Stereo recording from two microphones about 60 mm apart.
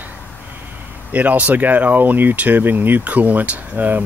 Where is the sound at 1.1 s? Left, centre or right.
Right.